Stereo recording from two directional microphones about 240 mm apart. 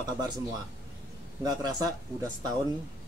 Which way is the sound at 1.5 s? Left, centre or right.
Centre.